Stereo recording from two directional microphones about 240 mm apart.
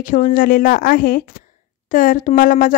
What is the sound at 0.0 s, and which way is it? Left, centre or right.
Speech, left.